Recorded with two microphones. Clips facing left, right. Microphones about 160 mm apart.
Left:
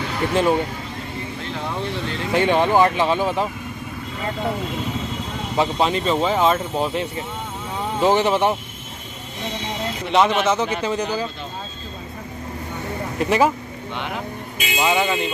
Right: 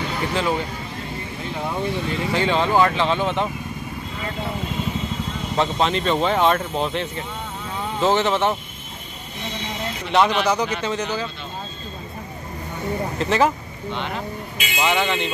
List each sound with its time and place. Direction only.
0.3 s speech: 15° left (ahead or behind)
1.4 s speech: 5° right (ahead or behind)
2.3 s speech: 15° left (ahead or behind)
5.6 s speech: 5° left (ahead or behind)
10.1 s speech: centre (ahead or behind)
10.6 s speech: 30° left (ahead or behind)
10.9 s speech: 10° left (ahead or behind)
13.2 s speech: 10° left (ahead or behind)